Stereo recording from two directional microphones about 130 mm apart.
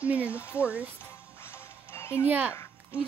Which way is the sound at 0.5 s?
10° right (ahead or behind).